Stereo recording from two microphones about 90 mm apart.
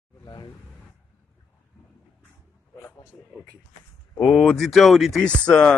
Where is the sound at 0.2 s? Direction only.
50° left (ahead or behind).